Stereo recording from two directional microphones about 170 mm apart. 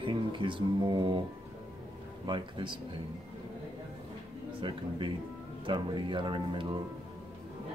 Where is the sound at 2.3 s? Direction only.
30° right (ahead or behind).